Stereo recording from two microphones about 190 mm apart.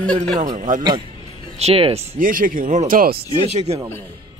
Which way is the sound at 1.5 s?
30° right (ahead or behind).